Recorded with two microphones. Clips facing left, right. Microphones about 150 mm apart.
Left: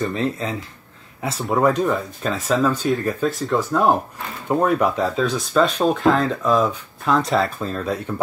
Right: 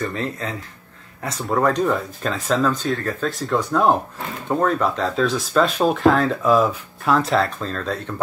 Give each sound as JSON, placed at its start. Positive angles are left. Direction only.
{"t": 0.0, "sound": "speech", "side_deg": 20}
{"t": 1.2, "sound": "speech", "side_deg": 5}
{"t": 3.3, "sound": "speech", "side_deg": 0}
{"t": 5.1, "sound": "speech", "side_deg": 0}
{"t": 7.6, "sound": "speech", "side_deg": 10}